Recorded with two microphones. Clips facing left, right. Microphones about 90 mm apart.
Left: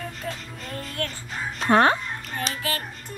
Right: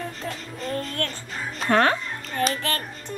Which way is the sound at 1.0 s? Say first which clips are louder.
Right 1 dB; 10° left (ahead or behind).